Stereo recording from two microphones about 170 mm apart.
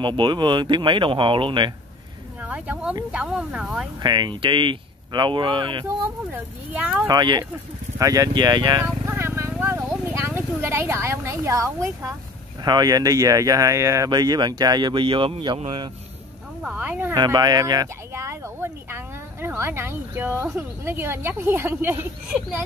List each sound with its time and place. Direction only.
0.0 s speech: 25° right (ahead or behind)
2.4 s speech: 10° right (ahead or behind)
4.0 s speech: 25° right (ahead or behind)
6.3 s speech: 10° right (ahead or behind)
7.1 s speech: 25° right (ahead or behind)
8.8 s a sound: 15° right (ahead or behind)
9.5 s speech: 10° right (ahead or behind); by 15.9 s 25° right (ahead or behind)
16.6 s speech: 10° right (ahead or behind)
17.1 s speech: 25° right (ahead or behind)